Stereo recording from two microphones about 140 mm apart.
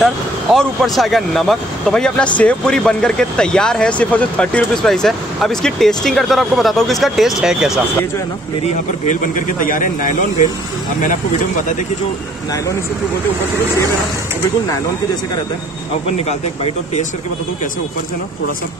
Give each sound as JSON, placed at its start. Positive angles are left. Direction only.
{"t": 0.0, "sound": "speech", "side_deg": 0}
{"t": 9.0, "sound": "speech", "side_deg": 65}
{"t": 16.3, "sound": "speech", "side_deg": 50}